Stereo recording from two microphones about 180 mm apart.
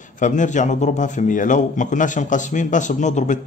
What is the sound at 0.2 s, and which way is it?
Speech, 45° left (ahead or behind).